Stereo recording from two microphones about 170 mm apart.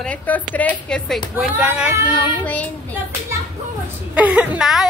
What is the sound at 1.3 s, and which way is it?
Speech, 10° right (ahead or behind).